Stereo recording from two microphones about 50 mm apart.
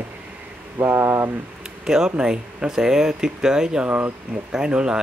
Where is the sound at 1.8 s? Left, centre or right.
Centre.